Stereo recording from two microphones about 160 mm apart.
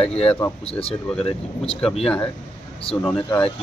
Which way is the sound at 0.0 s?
35° left (ahead or behind).